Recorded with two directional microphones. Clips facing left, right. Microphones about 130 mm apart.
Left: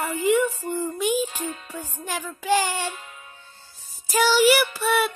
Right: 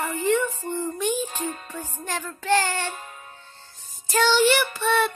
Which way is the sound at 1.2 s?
40° right (ahead or behind).